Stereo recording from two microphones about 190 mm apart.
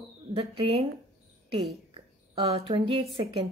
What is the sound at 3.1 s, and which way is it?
Speech, 25° right (ahead or behind).